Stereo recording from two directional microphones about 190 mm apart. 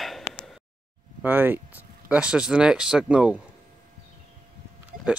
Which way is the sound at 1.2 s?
10° right (ahead or behind).